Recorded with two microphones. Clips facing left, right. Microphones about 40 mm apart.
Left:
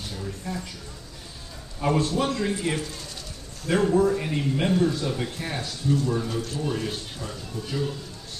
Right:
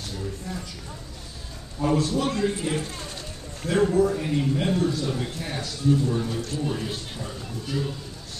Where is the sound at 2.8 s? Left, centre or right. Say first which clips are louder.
Right 2 dB; right.